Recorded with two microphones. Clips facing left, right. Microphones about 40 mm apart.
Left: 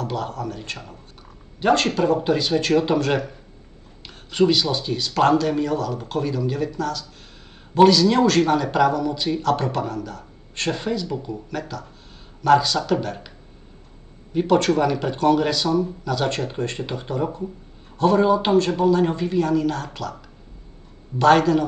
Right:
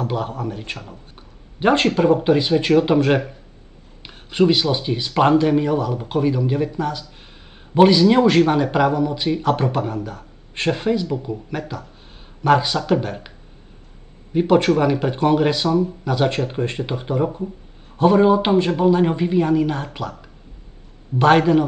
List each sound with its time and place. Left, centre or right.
0.0 s speech: right
1.1 s a sound: right
2.0 s speech: right
14.3 s speech: right
21.2 s speech: right